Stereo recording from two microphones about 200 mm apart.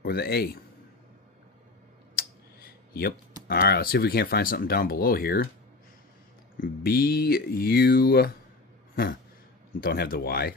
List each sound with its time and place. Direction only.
0.0 s a man's voice: 50° left (ahead or behind)
2.1 s clicking: 50° left (ahead or behind)
3.4 s speech: 55° left (ahead or behind)
6.6 s speech: 50° left (ahead or behind)
9.8 s speech: 50° left (ahead or behind)